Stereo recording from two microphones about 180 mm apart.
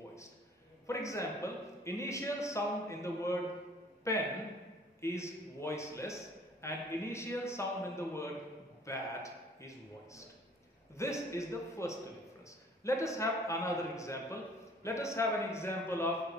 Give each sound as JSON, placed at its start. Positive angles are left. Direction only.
{"t": 0.8, "sound": "a man's voice", "side_deg": 15}
{"t": 11.0, "sound": "a man's voice", "side_deg": 15}